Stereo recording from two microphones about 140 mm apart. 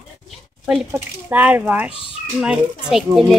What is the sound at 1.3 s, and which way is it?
Speech, 10° right (ahead or behind).